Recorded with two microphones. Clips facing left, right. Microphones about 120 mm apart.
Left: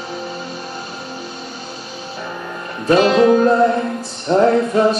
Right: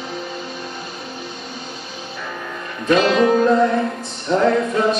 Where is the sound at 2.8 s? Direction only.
35° left (ahead or behind).